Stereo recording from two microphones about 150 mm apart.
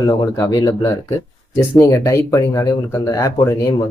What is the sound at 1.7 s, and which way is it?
Speech, 20° left (ahead or behind).